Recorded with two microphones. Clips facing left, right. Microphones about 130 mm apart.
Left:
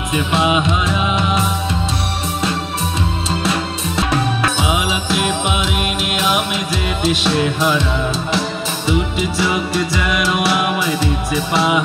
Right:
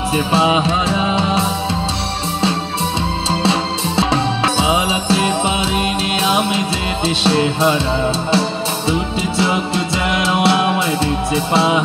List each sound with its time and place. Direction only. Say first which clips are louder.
0.1 s music: right 1 dB; 30° right (ahead or behind)
3.3 s music: right 4 dB; 30° right (ahead or behind)